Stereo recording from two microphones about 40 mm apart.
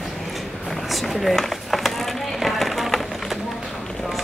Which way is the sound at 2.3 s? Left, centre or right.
Centre.